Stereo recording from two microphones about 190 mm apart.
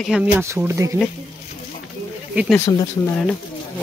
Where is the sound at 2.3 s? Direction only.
10° right (ahead or behind).